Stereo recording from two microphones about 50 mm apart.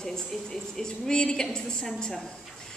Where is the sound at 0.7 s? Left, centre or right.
Centre.